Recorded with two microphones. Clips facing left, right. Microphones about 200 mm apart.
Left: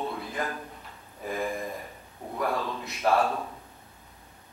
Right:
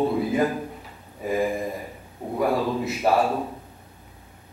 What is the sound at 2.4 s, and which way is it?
Speech, 30° right (ahead or behind).